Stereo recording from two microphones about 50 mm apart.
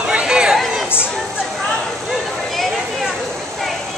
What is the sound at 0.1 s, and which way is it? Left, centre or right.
Chatter, centre.